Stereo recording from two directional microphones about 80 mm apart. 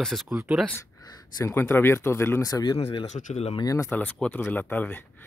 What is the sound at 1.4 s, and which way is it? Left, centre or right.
Speech, left.